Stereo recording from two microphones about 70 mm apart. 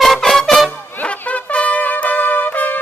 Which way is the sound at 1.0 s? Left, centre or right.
Left.